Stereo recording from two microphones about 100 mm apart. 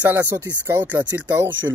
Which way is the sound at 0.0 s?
25° right (ahead or behind).